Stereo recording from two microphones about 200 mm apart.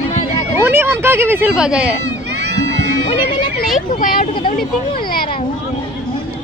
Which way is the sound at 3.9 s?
45° left (ahead or behind).